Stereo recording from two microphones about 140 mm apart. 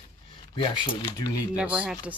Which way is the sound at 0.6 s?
35° left (ahead or behind).